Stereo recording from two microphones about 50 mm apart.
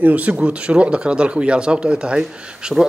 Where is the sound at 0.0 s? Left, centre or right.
Right.